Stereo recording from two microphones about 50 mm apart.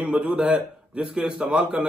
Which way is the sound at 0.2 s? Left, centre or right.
Right.